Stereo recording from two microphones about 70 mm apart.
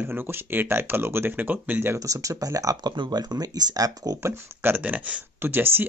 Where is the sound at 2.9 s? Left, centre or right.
Right.